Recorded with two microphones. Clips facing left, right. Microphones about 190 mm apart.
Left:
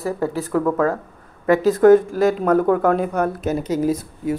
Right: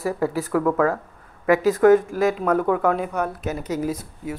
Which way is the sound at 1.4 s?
30° left (ahead or behind).